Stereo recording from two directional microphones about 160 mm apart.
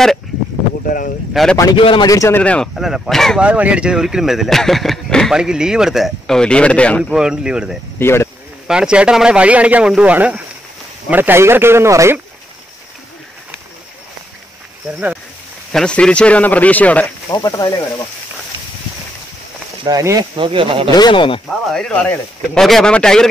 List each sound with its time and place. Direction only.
0.8 s speech: 60° left (ahead or behind)
1.3 s speech: centre (ahead or behind)
1.6 s a man's voice: 30° left (ahead or behind)
2.0 s speech: 20° left (ahead or behind)
7.1 s speech: 5° right (ahead or behind)
8.0 s speech: 15° left (ahead or behind)
8.6 s speech: 5° right (ahead or behind)
15.7 s speech: 5° left (ahead or behind)
17.3 s a man's voice: 25° left (ahead or behind)
19.8 s speech: 20° right (ahead or behind)
20.3 s speech: 30° right (ahead or behind)
20.9 s speech: 30° left (ahead or behind)
21.5 s speech: 5° left (ahead or behind)